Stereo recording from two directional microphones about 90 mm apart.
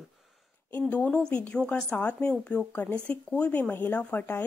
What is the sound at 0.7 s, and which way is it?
Speech, 20° left (ahead or behind).